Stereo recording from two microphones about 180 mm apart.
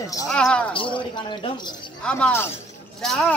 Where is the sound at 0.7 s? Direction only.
30° left (ahead or behind).